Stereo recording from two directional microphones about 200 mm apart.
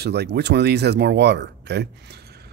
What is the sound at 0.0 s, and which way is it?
Speech, 55° right (ahead or behind).